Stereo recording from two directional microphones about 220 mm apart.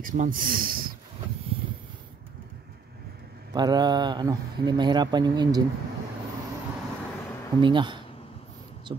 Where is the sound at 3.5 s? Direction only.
20° right (ahead or behind).